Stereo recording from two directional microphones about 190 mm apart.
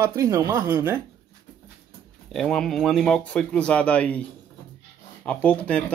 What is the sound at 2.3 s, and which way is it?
Speech, centre (ahead or behind).